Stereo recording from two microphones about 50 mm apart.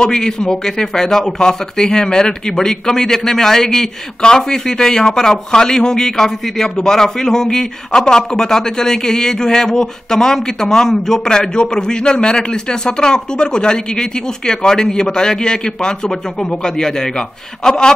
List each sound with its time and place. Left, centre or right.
0.0 s a man's voice: centre